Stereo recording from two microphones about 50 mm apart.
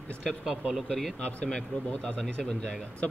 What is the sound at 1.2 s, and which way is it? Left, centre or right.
A man's voice, left.